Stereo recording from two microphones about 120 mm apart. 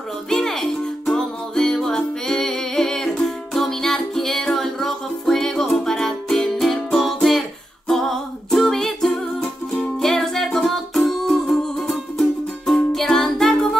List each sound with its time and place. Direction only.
0.3 s music: 5° left (ahead or behind)